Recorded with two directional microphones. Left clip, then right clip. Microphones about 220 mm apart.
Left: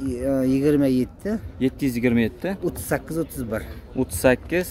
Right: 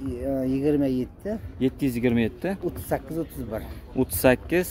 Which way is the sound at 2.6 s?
35° left (ahead or behind).